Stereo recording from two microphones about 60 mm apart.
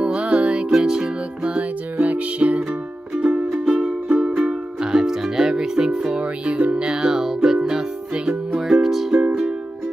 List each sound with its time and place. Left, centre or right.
0.0 s music: centre